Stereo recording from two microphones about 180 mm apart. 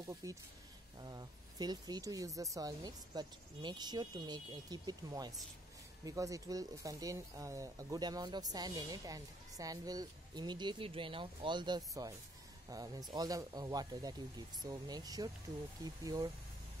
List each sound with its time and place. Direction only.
0.0 s speech: 20° right (ahead or behind)